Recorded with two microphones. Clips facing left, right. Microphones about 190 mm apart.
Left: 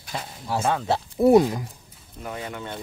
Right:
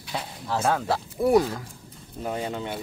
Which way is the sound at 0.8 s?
25° left (ahead or behind).